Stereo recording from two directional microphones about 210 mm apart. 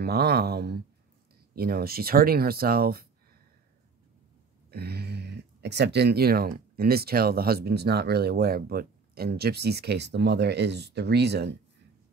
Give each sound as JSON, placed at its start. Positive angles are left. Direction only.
{"t": 0.0, "sound": "speech", "side_deg": -50}
{"t": 4.6, "sound": "speech", "side_deg": -50}